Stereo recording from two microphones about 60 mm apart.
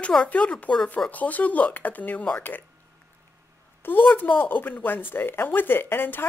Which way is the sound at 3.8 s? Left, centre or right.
Left.